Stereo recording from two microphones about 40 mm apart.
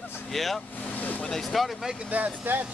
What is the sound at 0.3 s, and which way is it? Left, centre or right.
Speech, centre.